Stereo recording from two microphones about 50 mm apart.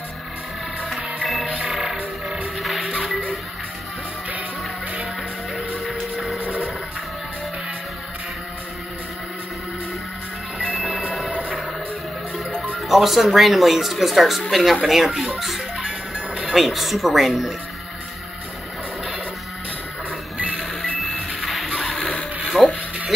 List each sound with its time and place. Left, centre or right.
0.9 s music: centre
5.9 s music: centre
12.7 s speech: centre
20.3 s music: right
21.4 s music: centre
21.8 s printer: left
22.5 s music: centre